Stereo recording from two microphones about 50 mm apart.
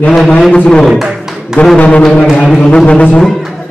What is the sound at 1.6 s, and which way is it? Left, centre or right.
Speech, left.